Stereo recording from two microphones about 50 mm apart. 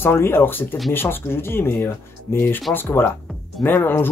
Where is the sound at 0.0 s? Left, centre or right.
Left.